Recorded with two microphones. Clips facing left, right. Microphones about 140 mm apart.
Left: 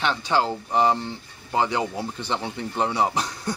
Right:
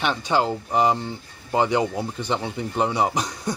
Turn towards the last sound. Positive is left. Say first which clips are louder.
# right 1 dB
turn(degrees=-15)  # may be behind; listen again after turning